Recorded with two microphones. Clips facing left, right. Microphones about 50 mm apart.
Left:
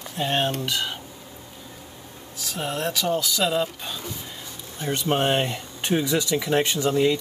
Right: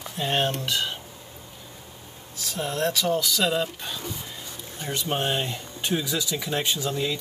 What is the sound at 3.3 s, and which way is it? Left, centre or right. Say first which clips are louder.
Speech: left 1 dB; centre.